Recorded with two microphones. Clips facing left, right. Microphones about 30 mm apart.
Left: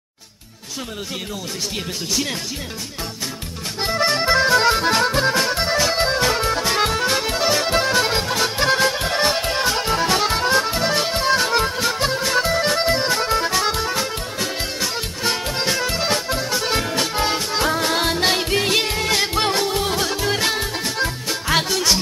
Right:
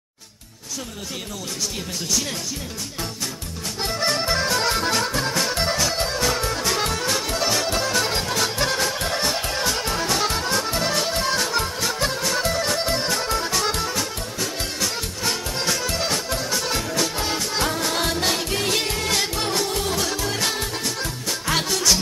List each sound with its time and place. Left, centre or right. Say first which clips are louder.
3.8 s accordion: left 4 dB; left
4.9 s music: left 5 dB; left
5.5 s music: left 3 dB; centre
5.9 s music: left 4 dB; left
10.7 s music: left 3 dB; centre
11.4 s music: left 5 dB; left
11.8 s music: left 3 dB; left
13.8 s music: left 3 dB; left
14.6 s music: left 2 dB; left
17.5 s music: left 4 dB; centre
19.3 s music: left 4 dB; left
19.7 s music: left 3 dB; left